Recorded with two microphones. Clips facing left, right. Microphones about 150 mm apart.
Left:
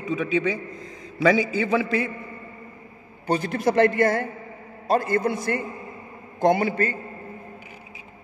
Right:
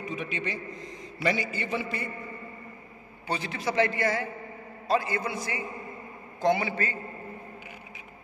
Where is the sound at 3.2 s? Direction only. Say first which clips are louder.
Left 9 dB; 45° left (ahead or behind).